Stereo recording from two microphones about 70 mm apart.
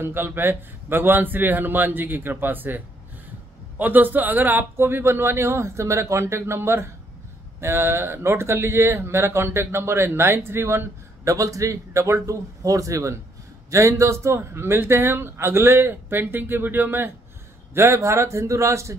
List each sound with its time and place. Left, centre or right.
0.0 s a man's voice: right
11.2 s a man's voice: right
17.7 s a man's voice: right